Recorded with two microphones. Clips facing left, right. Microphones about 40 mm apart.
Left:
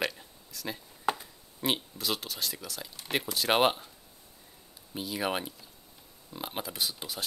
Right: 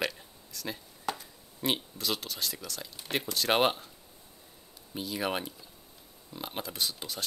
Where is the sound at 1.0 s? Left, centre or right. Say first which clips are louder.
Left 5 dB; centre.